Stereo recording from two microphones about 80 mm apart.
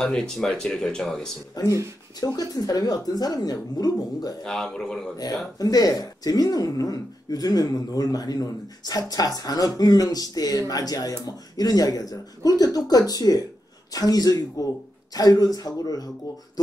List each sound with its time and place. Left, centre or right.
0.0 s speech: centre
1.5 s speech: left
4.4 s speech: centre
5.1 s speech: left